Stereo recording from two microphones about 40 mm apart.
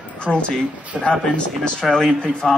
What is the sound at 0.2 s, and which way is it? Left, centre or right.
Speech, left.